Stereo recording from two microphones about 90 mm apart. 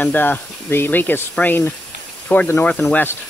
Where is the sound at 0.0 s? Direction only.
20° left (ahead or behind).